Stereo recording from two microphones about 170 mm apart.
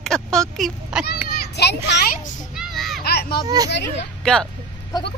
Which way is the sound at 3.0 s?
65° left (ahead or behind).